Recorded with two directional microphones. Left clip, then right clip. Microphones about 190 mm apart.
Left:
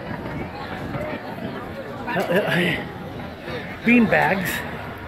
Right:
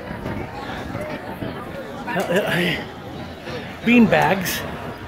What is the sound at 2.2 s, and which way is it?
Speech, 25° right (ahead or behind).